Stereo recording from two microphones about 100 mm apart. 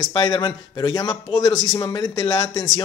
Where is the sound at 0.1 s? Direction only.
45° left (ahead or behind).